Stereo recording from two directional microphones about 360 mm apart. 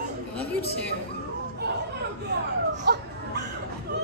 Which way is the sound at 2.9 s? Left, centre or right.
Right.